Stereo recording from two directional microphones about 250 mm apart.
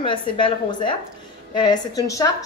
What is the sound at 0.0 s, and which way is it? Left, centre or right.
A woman's voice, centre.